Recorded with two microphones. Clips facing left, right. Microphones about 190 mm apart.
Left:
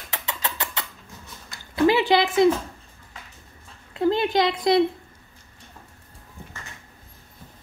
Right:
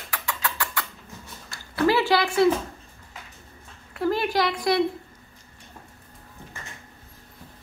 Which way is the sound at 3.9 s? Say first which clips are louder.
Left 3 dB; 20° left (ahead or behind).